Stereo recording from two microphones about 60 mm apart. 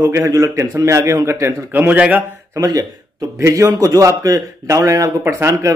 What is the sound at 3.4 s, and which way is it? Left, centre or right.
Speech, right.